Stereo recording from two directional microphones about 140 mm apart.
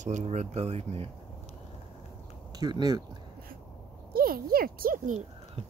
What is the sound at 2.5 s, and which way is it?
Speech, 30° right (ahead or behind).